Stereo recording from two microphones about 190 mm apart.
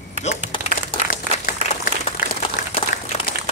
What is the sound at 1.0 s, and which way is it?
Applause, 50° left (ahead or behind).